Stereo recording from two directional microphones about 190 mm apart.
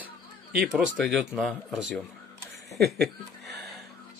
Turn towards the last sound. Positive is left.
turn(degrees=-60)  # may be behind; listen again after turning